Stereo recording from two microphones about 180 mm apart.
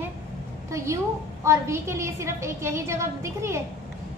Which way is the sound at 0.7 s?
15° right (ahead or behind).